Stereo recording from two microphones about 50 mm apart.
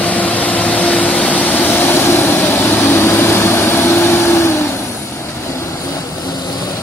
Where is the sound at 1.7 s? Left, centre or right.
Left.